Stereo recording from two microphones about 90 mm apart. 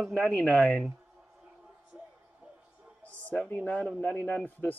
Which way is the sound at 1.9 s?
10° right (ahead or behind).